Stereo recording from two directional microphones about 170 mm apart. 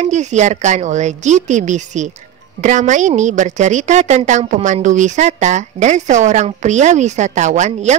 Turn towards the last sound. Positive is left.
turn(degrees=-45)  # may be behind; listen again after turning